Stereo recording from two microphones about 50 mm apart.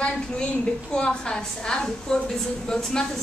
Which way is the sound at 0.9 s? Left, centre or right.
Centre.